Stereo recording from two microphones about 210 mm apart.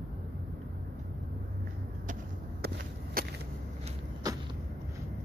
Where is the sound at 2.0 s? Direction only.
45° right (ahead or behind).